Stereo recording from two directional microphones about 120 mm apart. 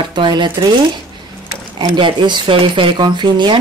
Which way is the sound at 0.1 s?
40° right (ahead or behind).